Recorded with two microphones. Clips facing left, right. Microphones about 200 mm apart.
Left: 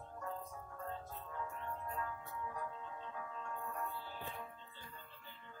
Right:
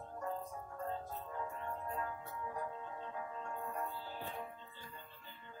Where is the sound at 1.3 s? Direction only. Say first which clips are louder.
Right 1 dB; 25° right (ahead or behind).